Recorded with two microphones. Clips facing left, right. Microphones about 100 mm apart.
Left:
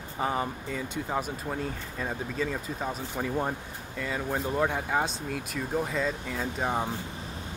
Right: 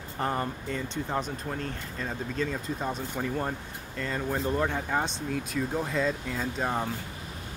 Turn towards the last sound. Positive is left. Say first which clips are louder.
# even
turn(degrees=10)  # may be behind; listen again after turning